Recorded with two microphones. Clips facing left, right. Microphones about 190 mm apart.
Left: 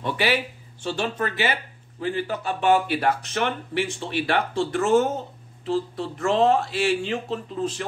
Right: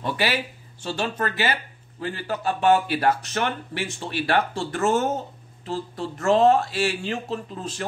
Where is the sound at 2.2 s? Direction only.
40° right (ahead or behind).